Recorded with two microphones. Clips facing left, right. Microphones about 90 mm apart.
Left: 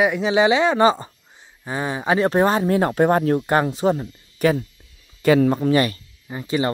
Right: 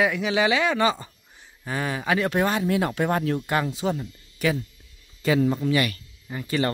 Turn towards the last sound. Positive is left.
turn(degrees=20)  # may be behind; listen again after turning